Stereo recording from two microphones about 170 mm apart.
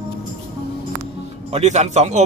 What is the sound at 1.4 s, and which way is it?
Speech, 40° right (ahead or behind).